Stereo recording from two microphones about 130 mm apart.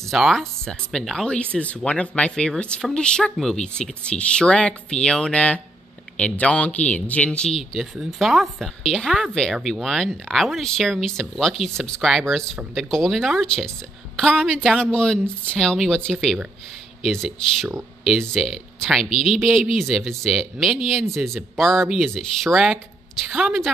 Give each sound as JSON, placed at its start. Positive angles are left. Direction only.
{"t": 0.0, "sound": "speech", "side_deg": 0}